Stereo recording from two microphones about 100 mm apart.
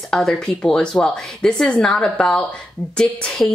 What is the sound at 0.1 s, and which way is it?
A woman's voice, 5° left (ahead or behind).